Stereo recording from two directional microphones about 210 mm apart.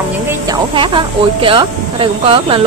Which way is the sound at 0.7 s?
25° right (ahead or behind).